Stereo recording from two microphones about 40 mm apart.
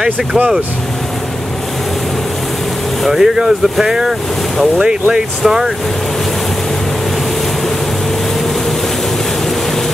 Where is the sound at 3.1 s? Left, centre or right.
Centre.